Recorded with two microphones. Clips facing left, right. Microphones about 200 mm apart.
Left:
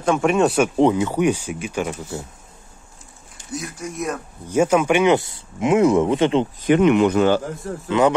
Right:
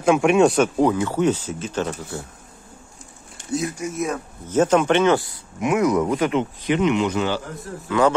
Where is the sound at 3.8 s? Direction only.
Centre (ahead or behind).